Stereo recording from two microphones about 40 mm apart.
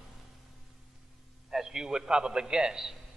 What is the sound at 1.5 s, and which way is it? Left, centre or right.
A man's voice, centre.